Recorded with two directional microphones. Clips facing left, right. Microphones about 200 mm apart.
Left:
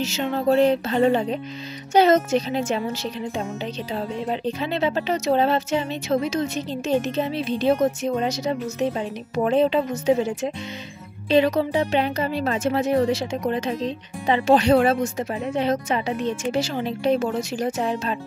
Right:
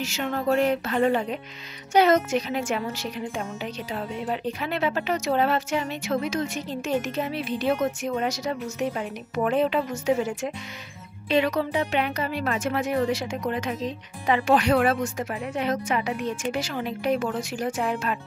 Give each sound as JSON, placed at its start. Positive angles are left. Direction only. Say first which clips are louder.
{"t": 0.0, "sound": "speech", "louder": "left 4 dB", "side_deg": 25}
{"t": 11.2, "sound": "speech", "louder": "left 4 dB", "side_deg": 30}